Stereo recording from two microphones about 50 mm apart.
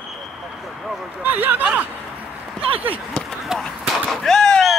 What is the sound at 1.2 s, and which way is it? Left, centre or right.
Speech, right.